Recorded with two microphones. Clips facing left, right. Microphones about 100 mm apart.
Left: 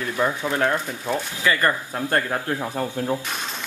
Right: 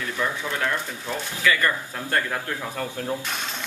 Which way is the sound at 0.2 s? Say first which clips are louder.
Left 5 dB; 40° left (ahead or behind).